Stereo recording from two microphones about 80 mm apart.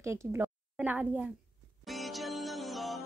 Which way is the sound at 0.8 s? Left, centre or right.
Centre.